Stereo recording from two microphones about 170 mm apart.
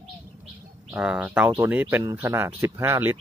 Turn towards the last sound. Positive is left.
turn(degrees=-10)  # may be behind; listen again after turning